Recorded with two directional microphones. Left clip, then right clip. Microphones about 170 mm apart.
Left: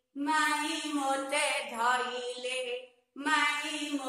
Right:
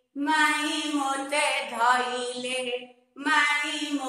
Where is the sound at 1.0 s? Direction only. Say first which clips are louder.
Right 3 dB; 10° left (ahead or behind).